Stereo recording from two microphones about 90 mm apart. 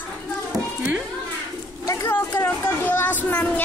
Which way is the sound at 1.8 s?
25° left (ahead or behind).